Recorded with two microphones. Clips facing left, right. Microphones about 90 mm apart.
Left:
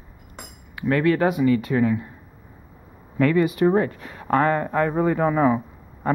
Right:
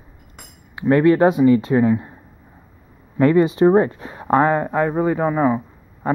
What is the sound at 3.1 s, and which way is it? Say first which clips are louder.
Speech: right 4 dB; 25° right (ahead or behind).